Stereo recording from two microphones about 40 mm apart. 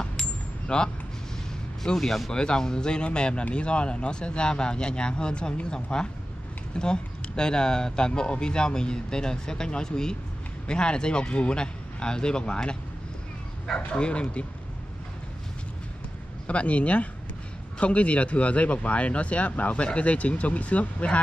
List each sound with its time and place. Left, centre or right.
0.0 s a sound: left
2.0 s speech: centre
2.3 s speech: centre
13.7 s speech: left
16.4 s speech: left